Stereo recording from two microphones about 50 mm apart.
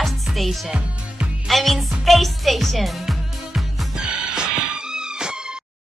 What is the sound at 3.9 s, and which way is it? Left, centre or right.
Music, centre.